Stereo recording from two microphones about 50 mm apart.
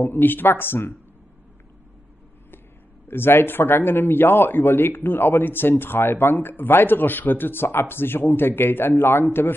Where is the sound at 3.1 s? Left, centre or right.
Left.